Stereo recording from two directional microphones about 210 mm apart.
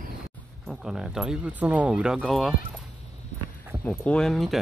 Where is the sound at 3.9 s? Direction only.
5° left (ahead or behind).